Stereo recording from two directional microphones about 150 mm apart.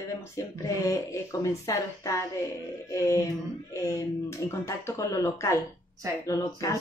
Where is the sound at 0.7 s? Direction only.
20° left (ahead or behind).